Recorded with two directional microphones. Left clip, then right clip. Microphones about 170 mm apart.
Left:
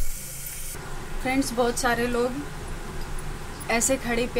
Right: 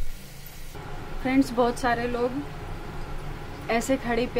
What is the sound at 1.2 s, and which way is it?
Speech, 10° right (ahead or behind).